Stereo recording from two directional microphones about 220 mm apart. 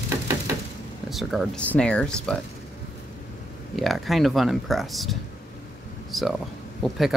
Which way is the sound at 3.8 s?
Centre (ahead or behind).